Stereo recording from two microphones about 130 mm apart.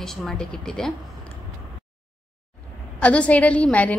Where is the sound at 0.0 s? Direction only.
5° left (ahead or behind).